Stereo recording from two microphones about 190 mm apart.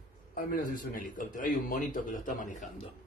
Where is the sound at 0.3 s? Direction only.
45° left (ahead or behind).